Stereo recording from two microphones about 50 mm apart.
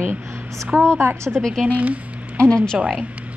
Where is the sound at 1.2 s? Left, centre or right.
Centre.